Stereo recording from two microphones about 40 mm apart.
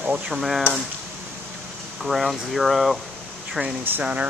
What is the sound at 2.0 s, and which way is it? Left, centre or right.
Speech, centre.